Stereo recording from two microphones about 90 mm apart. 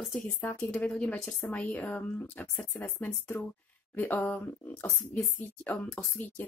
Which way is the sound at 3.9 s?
20° left (ahead or behind).